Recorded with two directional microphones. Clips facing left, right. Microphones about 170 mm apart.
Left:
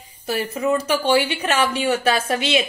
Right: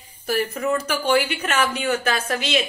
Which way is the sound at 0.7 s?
25° left (ahead or behind).